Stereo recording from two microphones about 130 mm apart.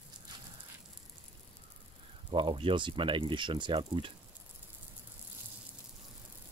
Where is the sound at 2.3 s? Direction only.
40° right (ahead or behind).